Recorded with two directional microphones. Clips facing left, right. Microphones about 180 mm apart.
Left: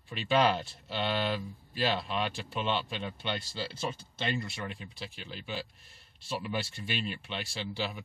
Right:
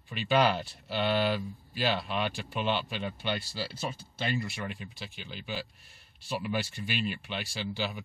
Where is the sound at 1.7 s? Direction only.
5° right (ahead or behind).